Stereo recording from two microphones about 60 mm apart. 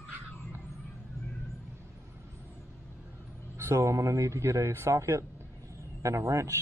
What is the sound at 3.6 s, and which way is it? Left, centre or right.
A man's voice, right.